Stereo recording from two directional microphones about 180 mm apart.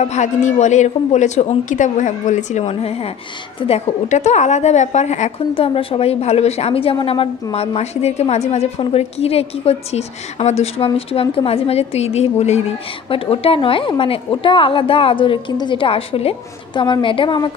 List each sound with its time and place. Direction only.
0.0 s a woman's voice: 40° left (ahead or behind)